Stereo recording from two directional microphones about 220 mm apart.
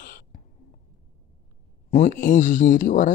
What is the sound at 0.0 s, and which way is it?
Beatboxing, 40° left (ahead or behind).